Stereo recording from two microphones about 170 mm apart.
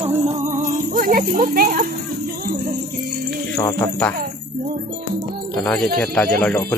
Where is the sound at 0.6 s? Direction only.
55° right (ahead or behind).